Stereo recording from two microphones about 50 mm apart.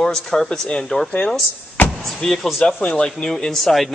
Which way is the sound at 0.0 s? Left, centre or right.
Centre.